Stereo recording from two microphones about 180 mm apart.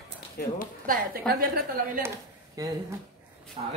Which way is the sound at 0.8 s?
50° right (ahead or behind).